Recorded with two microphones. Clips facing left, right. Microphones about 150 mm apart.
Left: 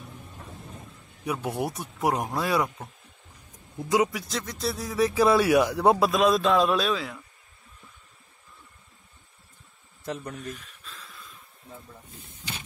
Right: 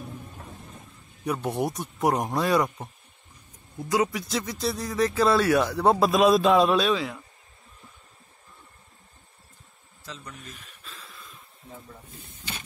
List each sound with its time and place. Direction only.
1.2 s speech: 5° left (ahead or behind)
4.1 s speech: centre (ahead or behind)
6.0 s speech: centre (ahead or behind)
10.0 s speech: 60° left (ahead or behind)
10.8 s a sound: centre (ahead or behind)